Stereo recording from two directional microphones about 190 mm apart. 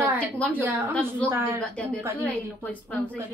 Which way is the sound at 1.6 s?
5° left (ahead or behind).